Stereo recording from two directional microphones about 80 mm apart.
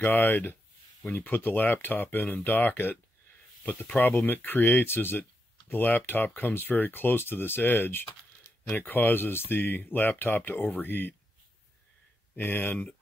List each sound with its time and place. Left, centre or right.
0.0 s speech: left
12.4 s speech: left